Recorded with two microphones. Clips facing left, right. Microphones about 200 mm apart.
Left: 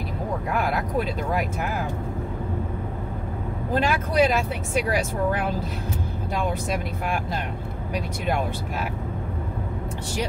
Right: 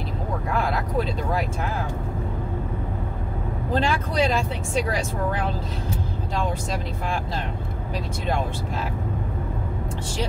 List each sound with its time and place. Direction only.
3.7 s speech: 10° left (ahead or behind)